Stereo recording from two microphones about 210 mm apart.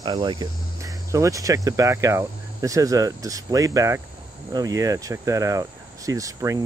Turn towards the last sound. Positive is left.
turn(degrees=-15)  # may be behind; listen again after turning